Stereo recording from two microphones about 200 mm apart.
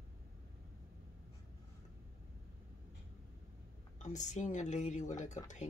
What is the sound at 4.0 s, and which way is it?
Speech, 35° left (ahead or behind).